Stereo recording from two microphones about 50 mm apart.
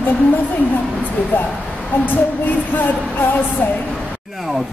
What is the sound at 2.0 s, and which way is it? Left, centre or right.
Music, left.